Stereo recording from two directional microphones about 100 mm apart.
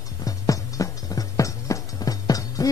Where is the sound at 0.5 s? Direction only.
35° left (ahead or behind).